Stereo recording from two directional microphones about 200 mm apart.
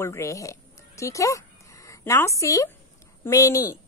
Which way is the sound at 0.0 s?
15° left (ahead or behind).